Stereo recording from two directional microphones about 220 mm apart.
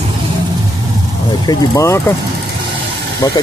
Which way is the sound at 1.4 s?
20° left (ahead or behind).